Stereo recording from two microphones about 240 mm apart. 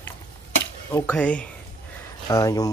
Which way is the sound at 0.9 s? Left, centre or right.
Centre.